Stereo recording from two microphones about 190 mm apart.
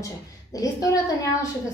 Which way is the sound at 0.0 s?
20° left (ahead or behind).